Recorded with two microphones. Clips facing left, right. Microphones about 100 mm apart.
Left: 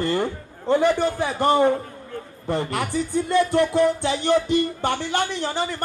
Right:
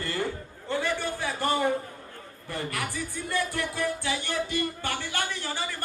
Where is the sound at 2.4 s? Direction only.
25° left (ahead or behind).